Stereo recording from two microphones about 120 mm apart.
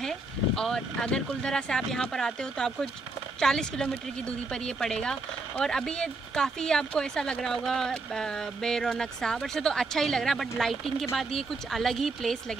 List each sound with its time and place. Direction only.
0.6 s speech: 5° left (ahead or behind)